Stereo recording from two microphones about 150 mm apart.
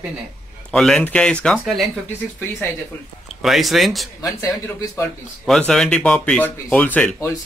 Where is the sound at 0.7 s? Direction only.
5° left (ahead or behind).